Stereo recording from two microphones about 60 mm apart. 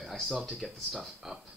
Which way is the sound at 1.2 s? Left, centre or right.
Centre.